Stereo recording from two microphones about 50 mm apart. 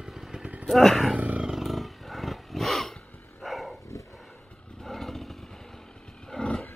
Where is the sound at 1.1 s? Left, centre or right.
Right.